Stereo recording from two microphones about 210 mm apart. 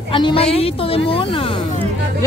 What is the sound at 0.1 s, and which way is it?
A woman's voice, 25° left (ahead or behind).